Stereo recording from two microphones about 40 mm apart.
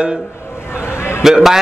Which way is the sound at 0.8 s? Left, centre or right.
Left.